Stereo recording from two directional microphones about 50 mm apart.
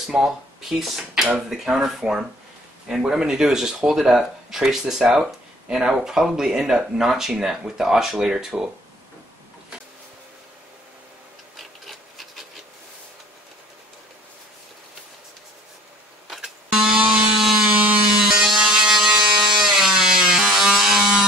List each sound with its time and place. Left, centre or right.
0.0 s speech: centre
11.5 s rub: centre
16.7 s buzzer: centre
17.0 s wood: centre
17.4 s tools: centre
17.7 s tools: right
18.0 s tools: centre
20.5 s a sound: centre